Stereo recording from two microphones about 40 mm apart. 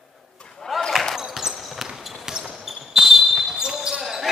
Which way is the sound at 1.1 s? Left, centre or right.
Centre.